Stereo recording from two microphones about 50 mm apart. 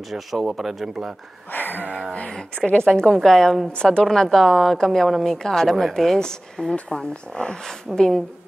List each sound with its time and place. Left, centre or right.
0.1 s a woman's voice: centre
1.5 s speech: left
2.2 s speech: centre
3.1 s a woman's voice: centre
3.7 s a woman's voice: centre